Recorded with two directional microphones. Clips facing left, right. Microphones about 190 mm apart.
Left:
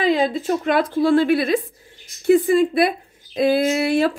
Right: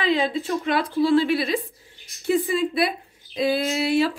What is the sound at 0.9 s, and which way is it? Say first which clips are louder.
A woman's voice: left 2 dB; 50° left (ahead or behind).